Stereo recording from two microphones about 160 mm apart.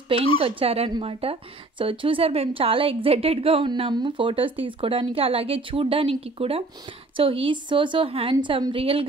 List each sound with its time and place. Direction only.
0.4 s a woman's voice: 35° right (ahead or behind)